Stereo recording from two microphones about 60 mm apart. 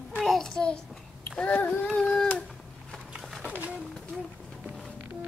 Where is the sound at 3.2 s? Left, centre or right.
Centre.